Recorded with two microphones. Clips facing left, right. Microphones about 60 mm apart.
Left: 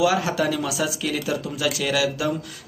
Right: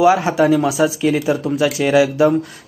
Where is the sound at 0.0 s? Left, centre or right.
Right.